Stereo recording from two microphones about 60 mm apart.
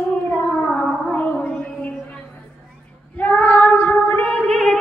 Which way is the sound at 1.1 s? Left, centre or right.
Left.